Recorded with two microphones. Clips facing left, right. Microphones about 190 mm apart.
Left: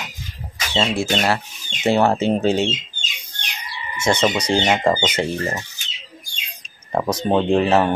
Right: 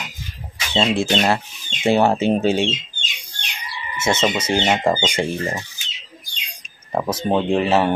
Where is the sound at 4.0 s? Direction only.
5° right (ahead or behind).